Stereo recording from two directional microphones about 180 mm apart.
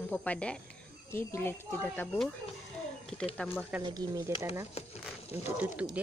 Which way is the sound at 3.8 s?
20° right (ahead or behind).